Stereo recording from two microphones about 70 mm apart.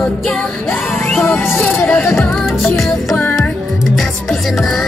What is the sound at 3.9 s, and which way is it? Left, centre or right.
Music, centre.